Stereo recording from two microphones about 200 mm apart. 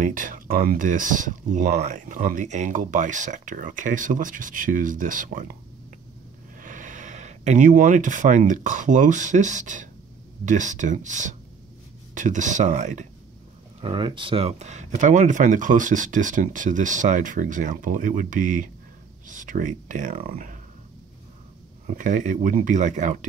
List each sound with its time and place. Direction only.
0.0 s speech: 40° right (ahead or behind)
6.6 s speech: 40° right (ahead or behind)
13.7 s speech: 25° right (ahead or behind); by 20.5 s 45° right (ahead or behind)
21.8 s speech: 40° right (ahead or behind)